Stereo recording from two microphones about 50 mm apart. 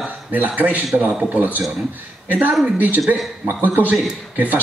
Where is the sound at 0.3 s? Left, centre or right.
Right.